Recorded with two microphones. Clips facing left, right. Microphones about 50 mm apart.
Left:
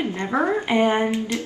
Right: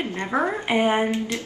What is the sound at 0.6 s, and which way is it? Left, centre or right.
Speech, centre.